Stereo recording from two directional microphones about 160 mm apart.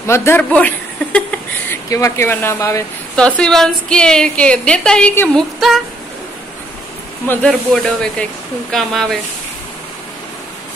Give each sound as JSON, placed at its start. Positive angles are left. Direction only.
{"t": 0.0, "sound": "a man's voice", "side_deg": 15}
{"t": 1.7, "sound": "speech", "side_deg": 20}
{"t": 3.2, "sound": "a woman's voice", "side_deg": 5}
{"t": 7.2, "sound": "a woman's voice", "side_deg": 5}